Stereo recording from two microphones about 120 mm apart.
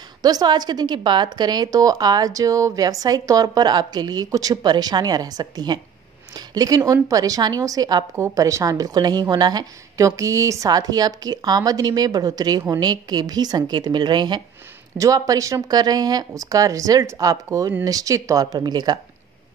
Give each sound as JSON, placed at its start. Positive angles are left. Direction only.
{"t": 0.2, "sound": "a woman's voice", "side_deg": -35}